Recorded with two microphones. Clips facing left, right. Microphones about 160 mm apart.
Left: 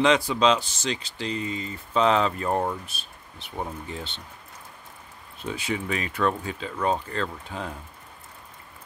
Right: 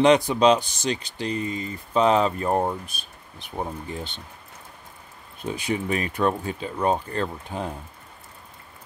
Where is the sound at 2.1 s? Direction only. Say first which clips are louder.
Right 2 dB; 30° right (ahead or behind).